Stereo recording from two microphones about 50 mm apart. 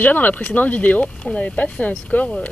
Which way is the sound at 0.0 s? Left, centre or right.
Left.